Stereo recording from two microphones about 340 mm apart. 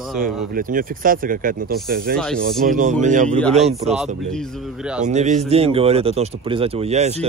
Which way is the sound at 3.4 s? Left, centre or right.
Centre.